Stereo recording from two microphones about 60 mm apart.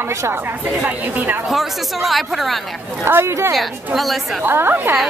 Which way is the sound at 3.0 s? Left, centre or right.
Right.